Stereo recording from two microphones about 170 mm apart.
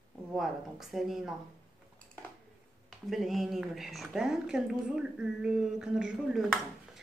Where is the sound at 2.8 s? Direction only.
Centre (ahead or behind).